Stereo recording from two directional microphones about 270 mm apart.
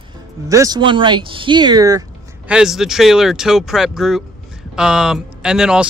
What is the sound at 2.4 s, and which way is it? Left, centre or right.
Speech, centre.